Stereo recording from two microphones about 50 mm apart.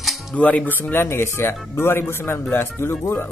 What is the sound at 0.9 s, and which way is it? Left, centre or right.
Speech, left.